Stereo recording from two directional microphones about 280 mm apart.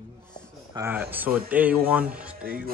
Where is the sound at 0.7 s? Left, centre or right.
Centre.